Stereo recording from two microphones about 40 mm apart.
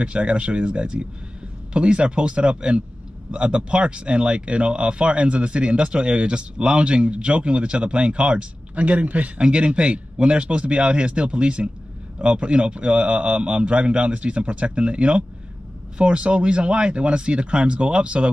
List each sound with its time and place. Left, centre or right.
0.0 s speech: right